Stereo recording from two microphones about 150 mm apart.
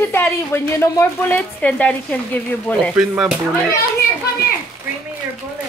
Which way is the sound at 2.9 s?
10° right (ahead or behind).